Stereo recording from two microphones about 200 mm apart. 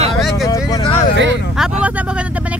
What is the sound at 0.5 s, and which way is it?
Vehicle, 20° left (ahead or behind).